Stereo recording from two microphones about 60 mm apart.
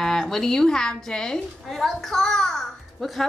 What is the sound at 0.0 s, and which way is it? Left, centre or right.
A woman's voice, centre.